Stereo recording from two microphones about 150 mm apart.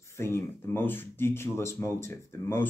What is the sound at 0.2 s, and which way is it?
Speech, 15° left (ahead or behind).